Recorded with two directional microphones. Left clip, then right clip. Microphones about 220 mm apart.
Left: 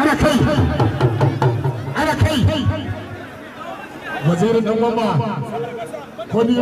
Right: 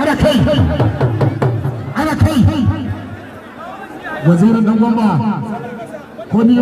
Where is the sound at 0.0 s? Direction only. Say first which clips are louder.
Right 2 dB; 10° right (ahead or behind).